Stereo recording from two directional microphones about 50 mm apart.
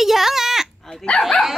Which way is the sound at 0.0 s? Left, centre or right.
Centre.